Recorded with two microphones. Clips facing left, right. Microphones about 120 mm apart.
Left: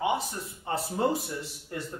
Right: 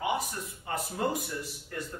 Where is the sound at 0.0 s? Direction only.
30° left (ahead or behind).